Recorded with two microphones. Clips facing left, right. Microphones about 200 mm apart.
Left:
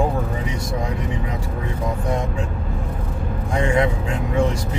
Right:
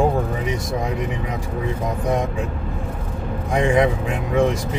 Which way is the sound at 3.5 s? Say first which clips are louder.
Right 2 dB; 15° right (ahead or behind).